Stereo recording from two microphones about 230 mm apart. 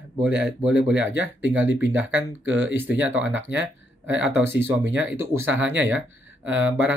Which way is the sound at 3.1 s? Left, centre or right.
Right.